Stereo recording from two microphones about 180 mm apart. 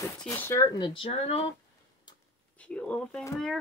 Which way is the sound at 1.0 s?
35° left (ahead or behind).